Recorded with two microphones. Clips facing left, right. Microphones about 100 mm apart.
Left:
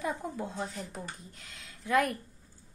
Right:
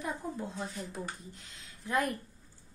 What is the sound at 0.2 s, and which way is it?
Speech, 90° left.